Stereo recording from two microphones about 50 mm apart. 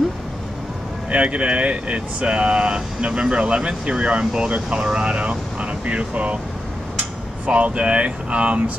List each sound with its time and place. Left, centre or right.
1.1 s speech: right
7.4 s speech: right